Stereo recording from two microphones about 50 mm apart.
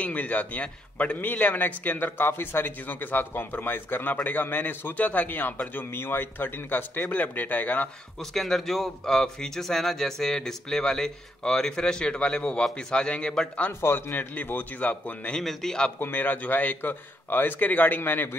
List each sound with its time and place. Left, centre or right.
0.0 s a man's voice: left
8.2 s speech: centre
13.7 s a man's voice: left
15.3 s speech: centre
16.0 s a man's voice: left